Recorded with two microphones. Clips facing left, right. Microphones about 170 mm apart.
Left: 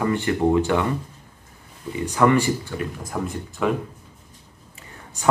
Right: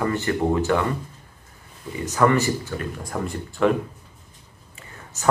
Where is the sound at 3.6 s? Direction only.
5° left (ahead or behind).